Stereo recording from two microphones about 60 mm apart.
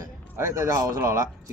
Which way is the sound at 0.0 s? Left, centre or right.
Right.